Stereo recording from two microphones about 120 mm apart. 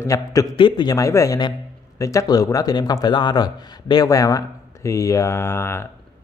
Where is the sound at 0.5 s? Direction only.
40° left (ahead or behind).